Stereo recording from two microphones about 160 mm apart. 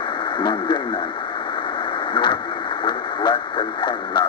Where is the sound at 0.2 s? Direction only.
30° left (ahead or behind).